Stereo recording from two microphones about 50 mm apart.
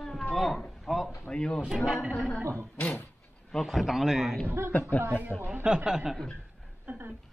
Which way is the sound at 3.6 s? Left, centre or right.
Centre.